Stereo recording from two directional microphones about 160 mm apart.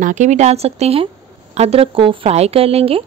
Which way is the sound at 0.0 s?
50° right (ahead or behind).